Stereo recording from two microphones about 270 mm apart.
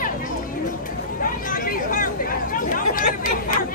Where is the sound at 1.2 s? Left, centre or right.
Left.